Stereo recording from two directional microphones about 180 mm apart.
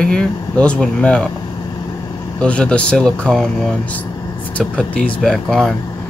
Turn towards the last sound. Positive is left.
turn(degrees=0)  # may be behind; listen again after turning